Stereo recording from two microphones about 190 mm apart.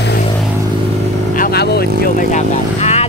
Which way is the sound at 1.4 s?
55° left (ahead or behind).